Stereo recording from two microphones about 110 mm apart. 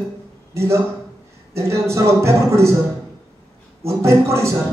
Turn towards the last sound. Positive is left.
turn(degrees=-25)  # may be behind; listen again after turning